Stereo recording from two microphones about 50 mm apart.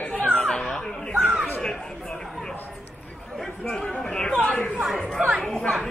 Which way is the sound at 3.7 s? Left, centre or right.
Centre.